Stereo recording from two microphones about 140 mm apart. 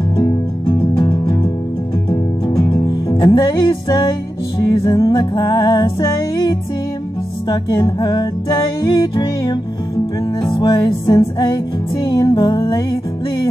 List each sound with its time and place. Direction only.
0.9 s music: 35° left (ahead or behind)